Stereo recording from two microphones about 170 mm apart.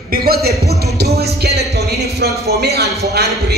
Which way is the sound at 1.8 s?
70° right (ahead or behind).